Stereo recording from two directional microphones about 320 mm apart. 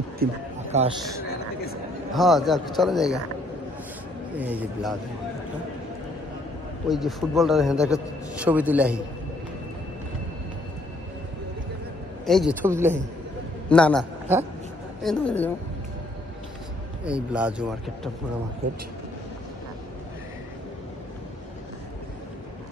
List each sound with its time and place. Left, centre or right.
0.2 s a sound: right
2.1 s a man's voice: centre
4.4 s a man's voice: centre
6.9 s a man's voice: centre
12.3 s a man's voice: centre
13.7 s a man's voice: centre
17.0 s a man's voice: centre